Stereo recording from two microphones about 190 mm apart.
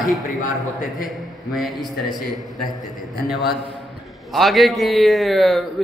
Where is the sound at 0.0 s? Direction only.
Centre (ahead or behind).